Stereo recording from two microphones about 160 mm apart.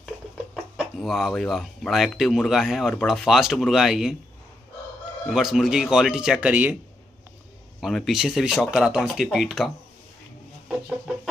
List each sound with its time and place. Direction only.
0.7 s speech: centre (ahead or behind)
5.2 s speech: centre (ahead or behind)
7.8 s speech: centre (ahead or behind)